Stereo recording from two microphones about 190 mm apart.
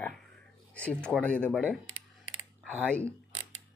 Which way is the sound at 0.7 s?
5° left (ahead or behind).